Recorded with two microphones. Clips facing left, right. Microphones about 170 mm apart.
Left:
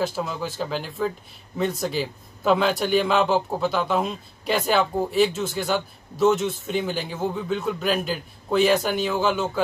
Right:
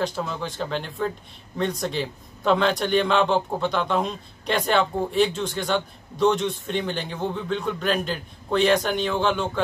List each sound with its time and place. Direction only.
0.0 s a man's voice: 5° left (ahead or behind)